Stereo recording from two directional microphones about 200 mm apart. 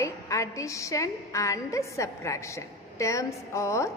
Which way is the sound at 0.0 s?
15° left (ahead or behind).